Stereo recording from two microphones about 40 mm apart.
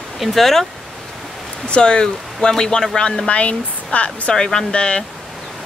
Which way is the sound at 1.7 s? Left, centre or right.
Left.